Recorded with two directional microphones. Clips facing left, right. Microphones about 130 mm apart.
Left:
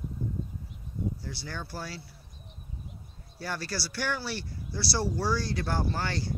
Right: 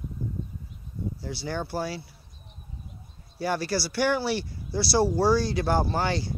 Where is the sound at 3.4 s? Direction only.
15° right (ahead or behind).